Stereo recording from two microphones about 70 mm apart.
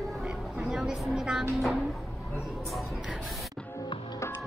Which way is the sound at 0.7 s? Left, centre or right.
Centre.